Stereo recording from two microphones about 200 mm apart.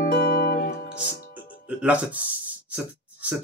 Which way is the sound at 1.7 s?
5° right (ahead or behind).